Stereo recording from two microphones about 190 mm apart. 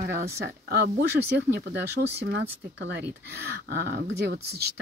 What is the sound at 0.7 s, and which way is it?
Speech, 55° right (ahead or behind).